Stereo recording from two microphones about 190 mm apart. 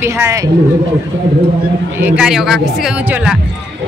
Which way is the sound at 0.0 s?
15° right (ahead or behind).